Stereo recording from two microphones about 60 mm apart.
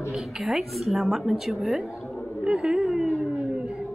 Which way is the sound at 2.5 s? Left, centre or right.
Centre.